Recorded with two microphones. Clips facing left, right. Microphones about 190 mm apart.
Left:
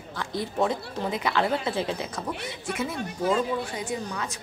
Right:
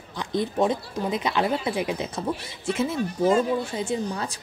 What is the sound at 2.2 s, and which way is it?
A woman's voice, 25° right (ahead or behind).